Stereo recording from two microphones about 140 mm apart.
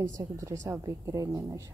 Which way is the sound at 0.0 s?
25° right (ahead or behind).